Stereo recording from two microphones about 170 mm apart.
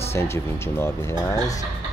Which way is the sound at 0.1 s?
15° left (ahead or behind).